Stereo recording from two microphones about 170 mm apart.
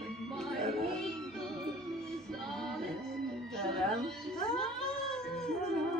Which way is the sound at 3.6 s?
5° left (ahead or behind).